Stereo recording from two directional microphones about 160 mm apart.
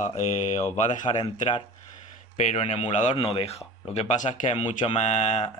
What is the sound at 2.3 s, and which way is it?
Speech, 45° left (ahead or behind).